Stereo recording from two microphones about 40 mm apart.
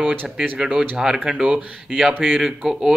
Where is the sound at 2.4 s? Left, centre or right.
Centre.